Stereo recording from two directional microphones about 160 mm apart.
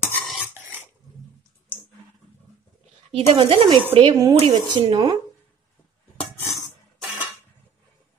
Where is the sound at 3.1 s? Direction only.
35° right (ahead or behind).